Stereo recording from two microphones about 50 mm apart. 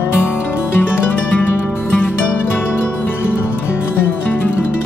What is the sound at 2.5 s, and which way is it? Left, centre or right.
Music, left.